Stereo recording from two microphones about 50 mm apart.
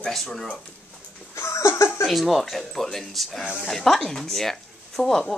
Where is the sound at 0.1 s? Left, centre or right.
Centre.